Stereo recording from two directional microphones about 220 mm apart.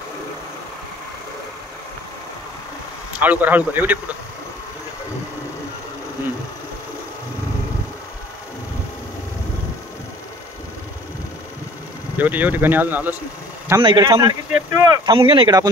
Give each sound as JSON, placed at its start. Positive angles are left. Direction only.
{"t": 3.1, "sound": "speech", "side_deg": -5}
{"t": 12.2, "sound": "speech", "side_deg": -10}